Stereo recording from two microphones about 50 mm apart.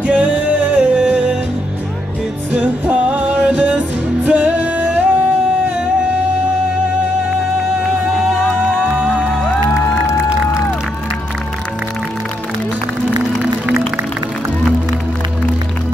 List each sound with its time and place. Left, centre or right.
0.0 s music: right
2.5 s music: right
7.8 s music: centre